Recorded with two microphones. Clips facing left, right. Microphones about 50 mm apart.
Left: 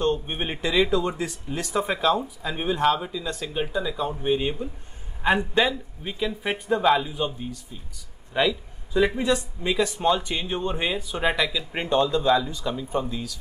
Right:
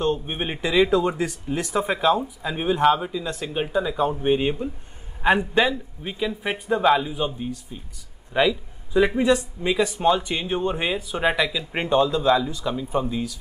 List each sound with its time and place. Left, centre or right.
0.0 s speech: centre
0.9 s speech: right; by 13.1 s centre